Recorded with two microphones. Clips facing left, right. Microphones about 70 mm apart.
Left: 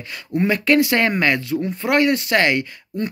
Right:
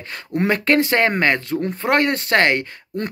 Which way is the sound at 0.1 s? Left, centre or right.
Right.